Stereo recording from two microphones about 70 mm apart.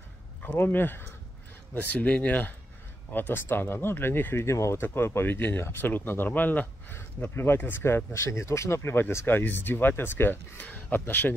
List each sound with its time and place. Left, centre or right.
0.4 s speech: left